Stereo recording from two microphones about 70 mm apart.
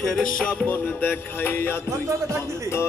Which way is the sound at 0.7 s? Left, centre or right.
Left.